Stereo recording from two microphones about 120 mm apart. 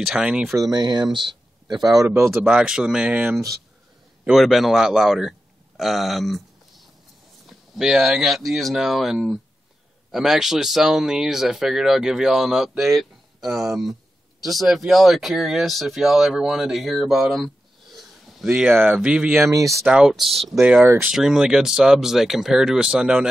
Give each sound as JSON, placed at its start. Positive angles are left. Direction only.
{"t": 0.0, "sound": "speech", "side_deg": -5}
{"t": 0.6, "sound": "speech", "side_deg": -35}
{"t": 2.0, "sound": "speech", "side_deg": -20}
{"t": 2.4, "sound": "speech", "side_deg": -5}
{"t": 4.3, "sound": "speech", "side_deg": 0}
{"t": 5.8, "sound": "a sound", "side_deg": 0}
{"t": 7.4, "sound": "speech", "side_deg": -5}
{"t": 14.4, "sound": "speech", "side_deg": 0}
{"t": 19.4, "sound": "speech", "side_deg": -25}
{"t": 19.8, "sound": "speech", "side_deg": -5}
{"t": 20.6, "sound": "speech", "side_deg": -15}
{"t": 21.1, "sound": "speech", "side_deg": -5}